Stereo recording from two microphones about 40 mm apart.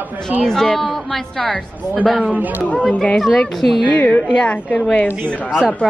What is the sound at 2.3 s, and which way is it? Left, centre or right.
Speech, right.